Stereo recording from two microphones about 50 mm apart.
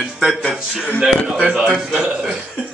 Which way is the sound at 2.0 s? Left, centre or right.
Centre.